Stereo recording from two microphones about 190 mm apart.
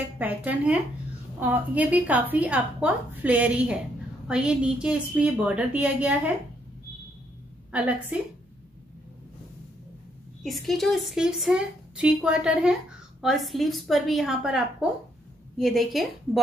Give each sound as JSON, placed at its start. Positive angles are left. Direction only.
{"t": 0.0, "sound": "a woman's voice", "side_deg": -10}
{"t": 7.7, "sound": "a woman's voice", "side_deg": -5}
{"t": 10.4, "sound": "a woman's voice", "side_deg": 0}